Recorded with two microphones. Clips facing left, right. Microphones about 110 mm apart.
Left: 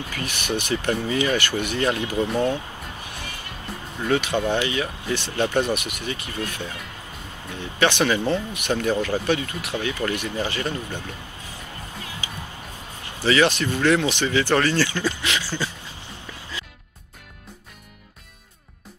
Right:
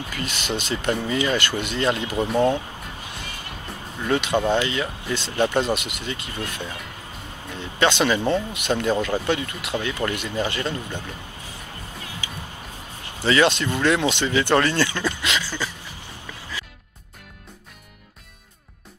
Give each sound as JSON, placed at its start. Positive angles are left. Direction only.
{"t": 0.1, "sound": "speech", "side_deg": -25}
{"t": 4.1, "sound": "speech", "side_deg": -20}
{"t": 13.2, "sound": "speech", "side_deg": -25}
{"t": 15.3, "sound": "a sound", "side_deg": 20}